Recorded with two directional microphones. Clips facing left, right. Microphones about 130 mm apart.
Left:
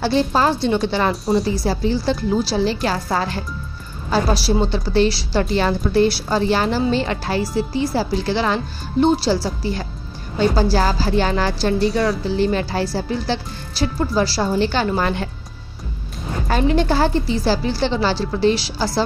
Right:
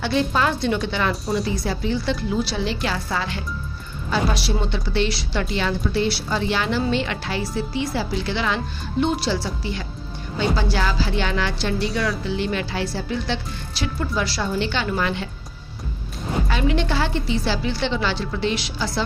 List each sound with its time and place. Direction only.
0.0 s a woman's voice: 35° left (ahead or behind)
11.9 s speech: 25° left (ahead or behind)
12.3 s a woman's voice: 35° left (ahead or behind)
16.4 s a woman's voice: 40° left (ahead or behind)